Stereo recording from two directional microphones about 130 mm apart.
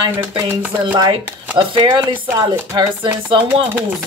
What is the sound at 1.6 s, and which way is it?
Speech, 40° right (ahead or behind).